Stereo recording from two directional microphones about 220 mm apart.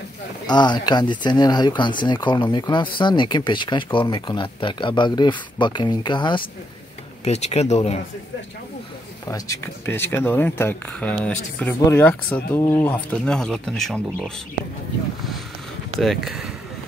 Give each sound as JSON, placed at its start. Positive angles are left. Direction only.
{"t": 0.5, "sound": "speech", "side_deg": 20}
{"t": 9.3, "sound": "speech", "side_deg": 15}
{"t": 16.0, "sound": "speech", "side_deg": 0}